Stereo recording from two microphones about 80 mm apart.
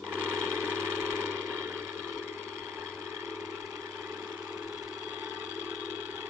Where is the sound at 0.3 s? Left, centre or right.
Right.